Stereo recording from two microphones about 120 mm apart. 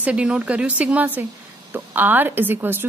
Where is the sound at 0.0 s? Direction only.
10° right (ahead or behind).